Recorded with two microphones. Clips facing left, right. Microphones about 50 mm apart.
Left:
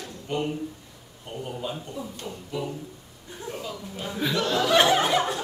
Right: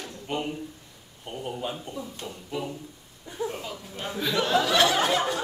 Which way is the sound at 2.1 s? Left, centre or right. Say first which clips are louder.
Left 2 dB; centre.